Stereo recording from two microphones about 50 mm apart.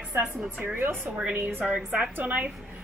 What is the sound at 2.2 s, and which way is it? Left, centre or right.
Speech, right.